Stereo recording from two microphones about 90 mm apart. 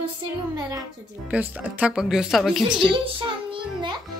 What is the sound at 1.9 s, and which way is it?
Speech, 5° right (ahead or behind).